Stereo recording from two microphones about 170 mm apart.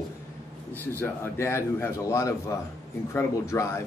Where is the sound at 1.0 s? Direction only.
15° left (ahead or behind).